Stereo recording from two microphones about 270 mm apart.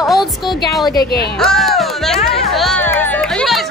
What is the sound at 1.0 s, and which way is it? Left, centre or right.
Speech, left.